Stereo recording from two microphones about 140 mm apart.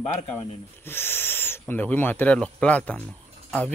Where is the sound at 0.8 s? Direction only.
15° left (ahead or behind).